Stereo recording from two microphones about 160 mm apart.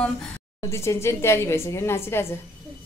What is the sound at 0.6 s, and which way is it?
A woman's voice, 20° left (ahead or behind).